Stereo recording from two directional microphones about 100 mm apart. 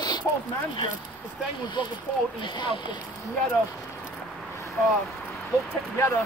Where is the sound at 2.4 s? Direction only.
50° left (ahead or behind).